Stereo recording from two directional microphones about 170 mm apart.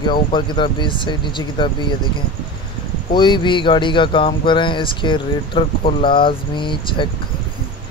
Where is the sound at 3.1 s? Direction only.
25° left (ahead or behind).